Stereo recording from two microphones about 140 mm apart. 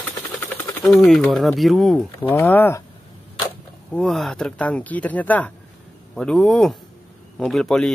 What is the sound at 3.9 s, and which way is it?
Speech, 5° left (ahead or behind).